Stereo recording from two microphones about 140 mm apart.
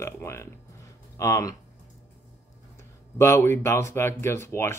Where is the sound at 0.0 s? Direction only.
20° left (ahead or behind).